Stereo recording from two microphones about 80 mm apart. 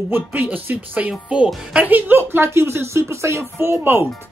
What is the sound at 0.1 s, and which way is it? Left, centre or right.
Speech, right.